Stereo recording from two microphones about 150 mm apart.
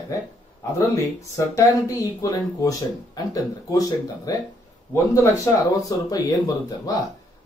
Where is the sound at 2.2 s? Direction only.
25° left (ahead or behind).